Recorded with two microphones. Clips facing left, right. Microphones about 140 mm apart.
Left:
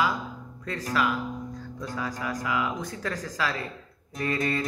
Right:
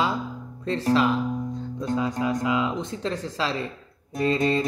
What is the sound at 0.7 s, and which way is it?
Music, 30° right (ahead or behind).